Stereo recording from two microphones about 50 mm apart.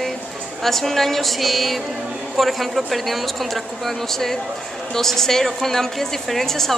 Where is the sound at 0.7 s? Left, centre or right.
Centre.